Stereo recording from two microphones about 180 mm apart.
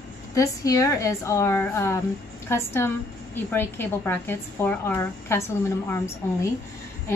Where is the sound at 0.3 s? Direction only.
20° left (ahead or behind).